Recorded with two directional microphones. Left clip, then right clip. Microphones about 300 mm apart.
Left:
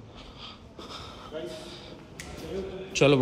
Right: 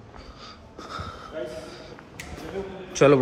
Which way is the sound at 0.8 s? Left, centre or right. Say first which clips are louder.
Right 6 dB; centre.